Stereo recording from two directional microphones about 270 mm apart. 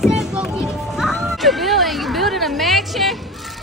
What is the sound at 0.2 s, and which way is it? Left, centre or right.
Music, centre.